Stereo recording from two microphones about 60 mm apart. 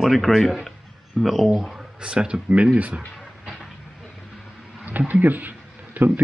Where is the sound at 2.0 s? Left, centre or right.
Centre.